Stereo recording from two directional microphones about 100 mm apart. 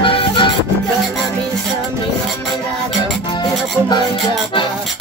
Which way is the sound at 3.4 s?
45° left (ahead or behind).